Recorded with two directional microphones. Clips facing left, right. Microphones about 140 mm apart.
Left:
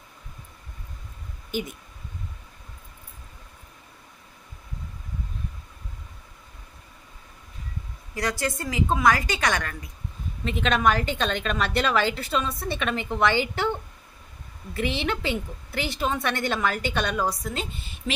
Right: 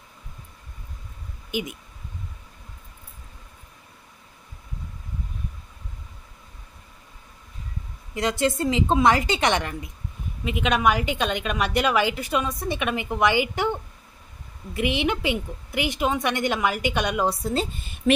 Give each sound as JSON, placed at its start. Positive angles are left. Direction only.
{"t": 1.5, "sound": "speech", "side_deg": -10}
{"t": 8.1, "sound": "a woman's voice", "side_deg": -20}
{"t": 10.4, "sound": "a woman's voice", "side_deg": -10}
{"t": 17.3, "sound": "a woman's voice", "side_deg": -30}
{"t": 18.1, "sound": "speech", "side_deg": -50}